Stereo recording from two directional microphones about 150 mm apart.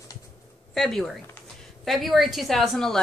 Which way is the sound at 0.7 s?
Centre (ahead or behind).